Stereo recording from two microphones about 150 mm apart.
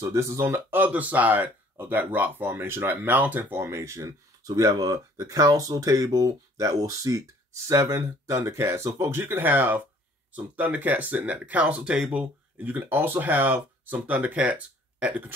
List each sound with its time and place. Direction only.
0.0 s speech: 20° right (ahead or behind)